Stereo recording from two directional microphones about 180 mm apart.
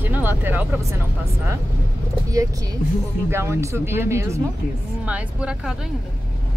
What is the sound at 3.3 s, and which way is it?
Speech, 15° right (ahead or behind).